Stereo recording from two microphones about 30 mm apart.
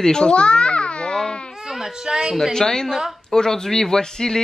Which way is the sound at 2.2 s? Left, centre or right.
Centre.